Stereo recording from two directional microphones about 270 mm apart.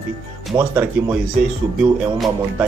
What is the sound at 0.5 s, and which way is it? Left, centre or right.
Speech, centre.